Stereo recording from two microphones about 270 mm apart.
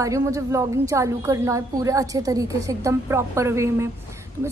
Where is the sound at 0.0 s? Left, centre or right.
Centre.